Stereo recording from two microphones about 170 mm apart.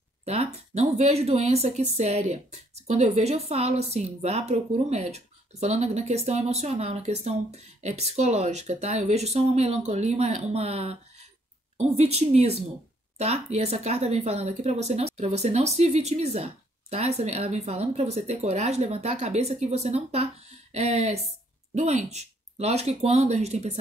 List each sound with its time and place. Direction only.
0.2 s speech: 40° right (ahead or behind)